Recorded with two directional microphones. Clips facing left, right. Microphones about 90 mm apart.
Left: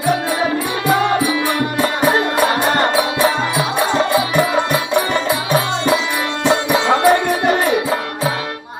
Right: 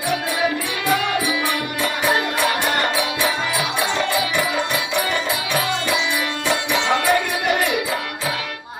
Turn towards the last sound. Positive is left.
turn(degrees=35)  # may be behind; listen again after turning